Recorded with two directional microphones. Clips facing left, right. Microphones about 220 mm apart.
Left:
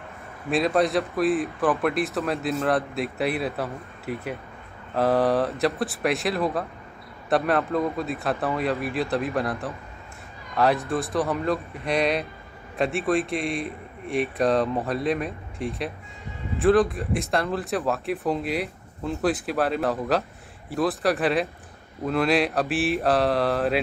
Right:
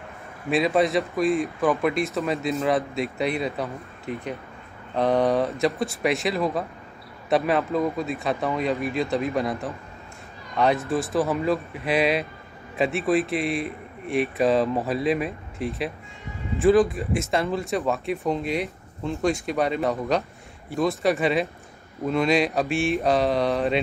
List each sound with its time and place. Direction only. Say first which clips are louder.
0.5 s a man's voice: right 1 dB; centre (ahead or behind)